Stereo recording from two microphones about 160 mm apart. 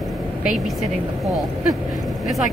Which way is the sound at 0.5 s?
Centre (ahead or behind).